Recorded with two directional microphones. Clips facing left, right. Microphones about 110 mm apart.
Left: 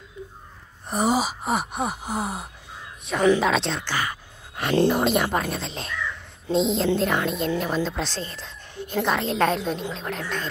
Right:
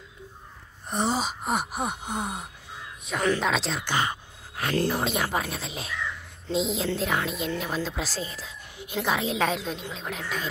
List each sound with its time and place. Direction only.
0.8 s a woman's voice: 5° left (ahead or behind)
3.8 s speech: 20° right (ahead or behind)
4.7 s speech: 20° left (ahead or behind)
5.0 s a woman's voice: centre (ahead or behind)